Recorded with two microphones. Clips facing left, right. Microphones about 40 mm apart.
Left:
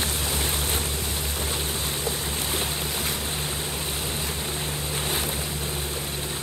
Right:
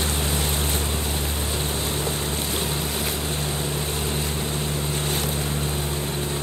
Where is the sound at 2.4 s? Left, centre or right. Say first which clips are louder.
Right 1 dB; centre.